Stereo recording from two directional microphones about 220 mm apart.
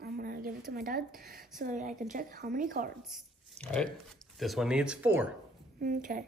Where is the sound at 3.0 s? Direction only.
Centre (ahead or behind).